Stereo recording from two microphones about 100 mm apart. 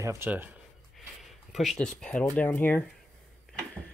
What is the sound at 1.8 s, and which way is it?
Speech, 10° left (ahead or behind).